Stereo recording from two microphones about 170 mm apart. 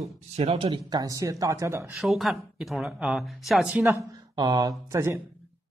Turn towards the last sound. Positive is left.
turn(degrees=-15)  # may be behind; listen again after turning